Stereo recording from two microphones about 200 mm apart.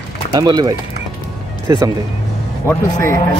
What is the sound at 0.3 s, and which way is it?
Speech, 20° right (ahead or behind).